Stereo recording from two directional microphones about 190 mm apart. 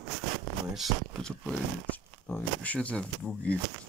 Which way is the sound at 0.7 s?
Centre (ahead or behind).